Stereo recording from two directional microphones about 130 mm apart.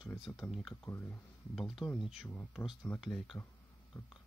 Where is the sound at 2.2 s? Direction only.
10° left (ahead or behind).